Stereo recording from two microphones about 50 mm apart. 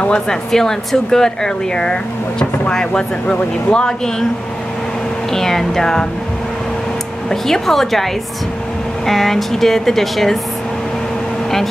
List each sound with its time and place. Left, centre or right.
0.0 s speech: left
0.5 s speech: centre
5.3 s speech: centre
7.2 s speech: centre